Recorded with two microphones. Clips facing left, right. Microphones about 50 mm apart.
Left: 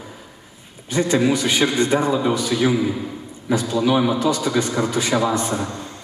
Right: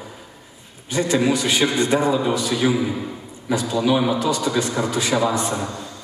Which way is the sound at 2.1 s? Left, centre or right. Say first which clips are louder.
Left 1 dB; centre.